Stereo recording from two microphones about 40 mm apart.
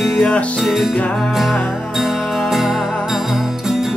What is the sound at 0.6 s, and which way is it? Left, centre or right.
Music, centre.